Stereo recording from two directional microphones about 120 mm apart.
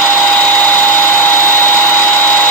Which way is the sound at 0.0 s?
10° left (ahead or behind).